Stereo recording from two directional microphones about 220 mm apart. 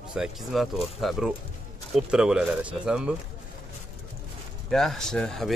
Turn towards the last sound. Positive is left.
turn(degrees=0)  # may be behind; listen again after turning